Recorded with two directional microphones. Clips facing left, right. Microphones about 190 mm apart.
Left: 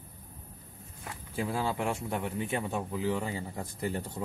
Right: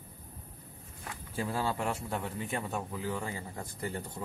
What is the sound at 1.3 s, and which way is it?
A man's voice, 10° left (ahead or behind).